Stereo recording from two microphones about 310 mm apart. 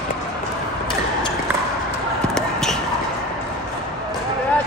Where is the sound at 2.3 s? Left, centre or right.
Centre.